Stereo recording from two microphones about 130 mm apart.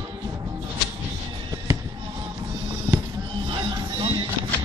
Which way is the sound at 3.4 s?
35° right (ahead or behind).